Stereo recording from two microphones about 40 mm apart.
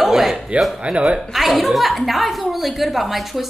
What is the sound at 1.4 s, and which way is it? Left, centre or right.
Speech, centre.